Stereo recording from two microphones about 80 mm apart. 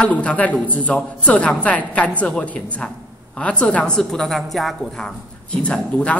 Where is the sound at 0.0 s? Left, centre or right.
Centre.